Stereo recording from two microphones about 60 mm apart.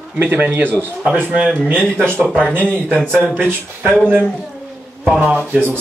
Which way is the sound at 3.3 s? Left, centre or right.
Right.